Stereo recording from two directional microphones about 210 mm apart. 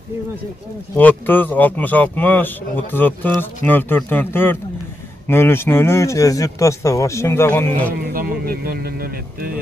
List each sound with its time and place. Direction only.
0.9 s a man's voice: 10° left (ahead or behind)
7.9 s speech: 45° right (ahead or behind)